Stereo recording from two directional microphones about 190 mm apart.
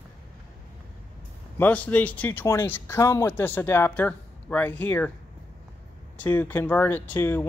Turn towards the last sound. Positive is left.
turn(degrees=10)  # may be behind; listen again after turning